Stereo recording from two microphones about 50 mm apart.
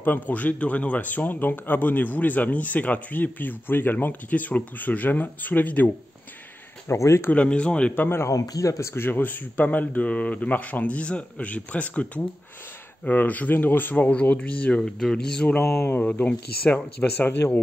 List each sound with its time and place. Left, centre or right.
0.0 s a man's voice: left
6.9 s speech: left
7.4 s speech: left
8.1 s a man's voice: left
8.9 s a man's voice: left
14.8 s speech: centre
16.0 s a man's voice: left